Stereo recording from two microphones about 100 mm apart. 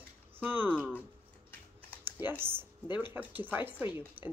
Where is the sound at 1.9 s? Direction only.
20° right (ahead or behind).